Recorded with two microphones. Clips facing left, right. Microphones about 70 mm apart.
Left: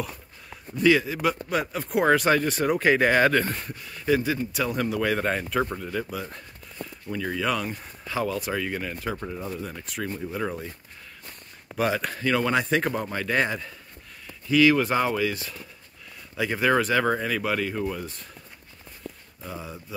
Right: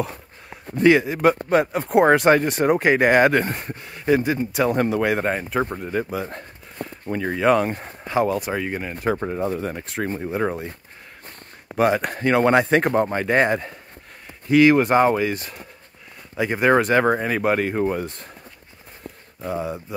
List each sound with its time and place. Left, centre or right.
0.7 s speech: right
5.0 s speech: right
9.0 s speech: right
19.1 s a sound: right
19.4 s speech: right